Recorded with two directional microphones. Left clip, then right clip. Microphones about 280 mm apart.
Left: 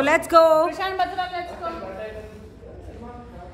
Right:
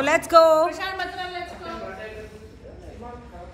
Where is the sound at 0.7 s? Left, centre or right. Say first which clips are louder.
Left 4 dB; left.